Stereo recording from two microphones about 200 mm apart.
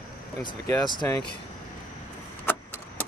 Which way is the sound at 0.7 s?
20° left (ahead or behind).